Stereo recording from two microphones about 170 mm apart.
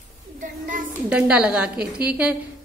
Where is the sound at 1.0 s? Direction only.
5° right (ahead or behind).